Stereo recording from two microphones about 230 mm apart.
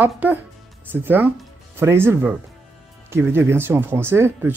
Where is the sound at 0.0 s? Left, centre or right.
Centre.